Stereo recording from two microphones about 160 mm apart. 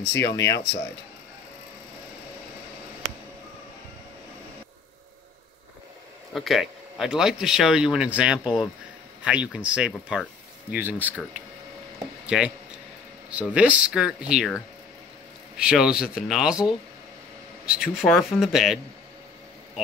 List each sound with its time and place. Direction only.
0.2 s speech: 90° left
6.3 s speech: centre (ahead or behind)
12.3 s speech: 5° right (ahead or behind)